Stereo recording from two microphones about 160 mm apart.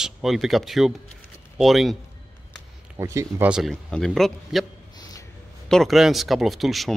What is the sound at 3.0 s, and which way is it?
Speech, 20° right (ahead or behind).